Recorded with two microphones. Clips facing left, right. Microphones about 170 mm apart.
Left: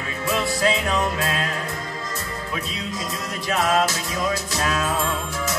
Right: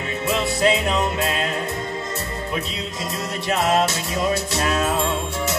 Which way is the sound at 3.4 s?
25° right (ahead or behind).